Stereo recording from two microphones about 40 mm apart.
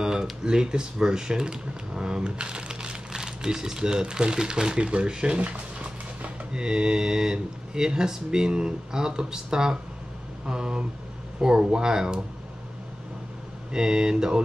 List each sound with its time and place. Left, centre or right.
0.0 s speech: centre
13.7 s speech: centre